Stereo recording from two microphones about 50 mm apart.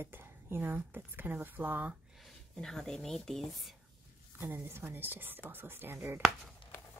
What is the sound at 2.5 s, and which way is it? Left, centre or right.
Speech, centre.